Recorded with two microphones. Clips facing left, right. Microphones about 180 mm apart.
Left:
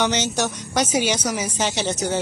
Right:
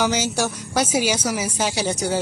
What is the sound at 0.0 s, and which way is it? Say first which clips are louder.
A woman's voice: even; 5° right (ahead or behind).